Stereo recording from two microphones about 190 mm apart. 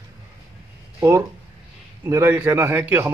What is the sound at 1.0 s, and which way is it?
A man's voice, 15° right (ahead or behind).